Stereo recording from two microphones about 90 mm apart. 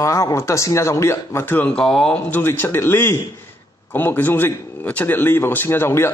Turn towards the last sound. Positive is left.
turn(degrees=30)  # may be behind; listen again after turning